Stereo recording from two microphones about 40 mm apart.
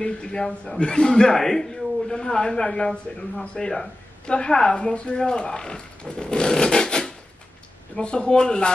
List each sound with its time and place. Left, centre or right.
0.0 s speech: left